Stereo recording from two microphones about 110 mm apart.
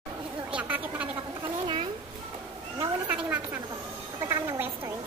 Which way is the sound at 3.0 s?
15° right (ahead or behind).